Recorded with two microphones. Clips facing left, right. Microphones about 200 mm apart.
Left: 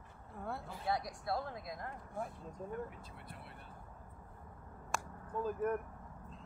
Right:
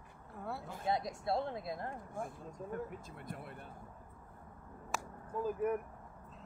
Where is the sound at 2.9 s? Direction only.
45° right (ahead or behind).